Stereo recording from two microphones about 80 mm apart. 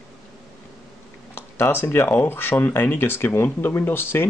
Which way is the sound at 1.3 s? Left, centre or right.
Left.